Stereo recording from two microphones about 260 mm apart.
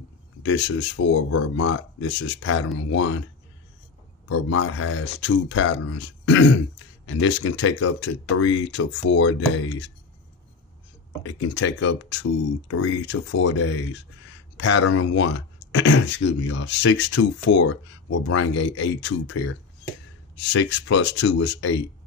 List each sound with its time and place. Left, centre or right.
0.4 s speech: left
4.5 s speech: left
11.2 s speech: left